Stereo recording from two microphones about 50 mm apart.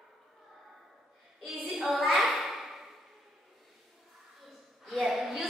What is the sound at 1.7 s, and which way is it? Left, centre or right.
Child singing, centre.